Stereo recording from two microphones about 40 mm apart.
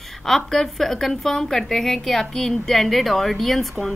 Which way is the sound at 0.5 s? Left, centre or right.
Centre.